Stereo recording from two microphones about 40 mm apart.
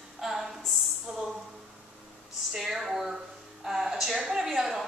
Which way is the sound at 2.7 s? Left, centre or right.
Centre.